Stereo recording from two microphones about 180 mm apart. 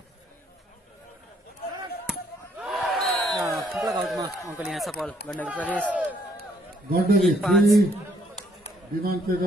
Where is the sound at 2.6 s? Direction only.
Centre (ahead or behind).